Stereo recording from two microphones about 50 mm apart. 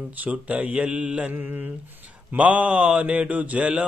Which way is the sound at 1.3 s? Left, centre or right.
Right.